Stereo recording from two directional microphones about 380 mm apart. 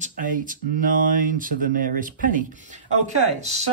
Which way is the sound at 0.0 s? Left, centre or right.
Right.